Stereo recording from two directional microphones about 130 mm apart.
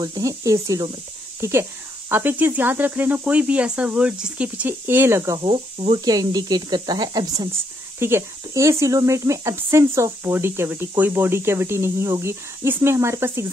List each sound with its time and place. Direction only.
0.0 s speech: 25° right (ahead or behind)
5.4 s speech: 45° right (ahead or behind)
5.9 s speech: 30° right (ahead or behind)
8.0 s speech: 20° right (ahead or behind)